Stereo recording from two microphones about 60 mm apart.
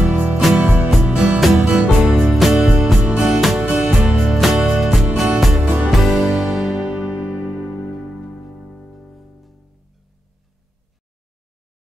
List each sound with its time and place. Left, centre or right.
0.0 s music: centre
2.0 s music: centre
7.1 s music: centre
7.8 s music: centre